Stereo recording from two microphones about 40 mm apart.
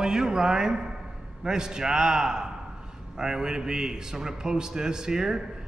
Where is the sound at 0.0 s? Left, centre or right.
Centre.